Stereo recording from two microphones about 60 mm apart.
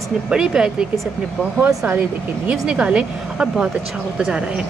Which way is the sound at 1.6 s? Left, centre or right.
Right.